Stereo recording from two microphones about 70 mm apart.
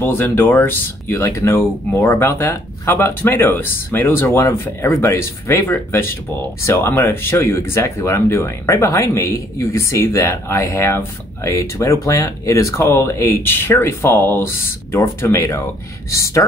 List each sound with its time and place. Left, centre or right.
0.0 s speech: left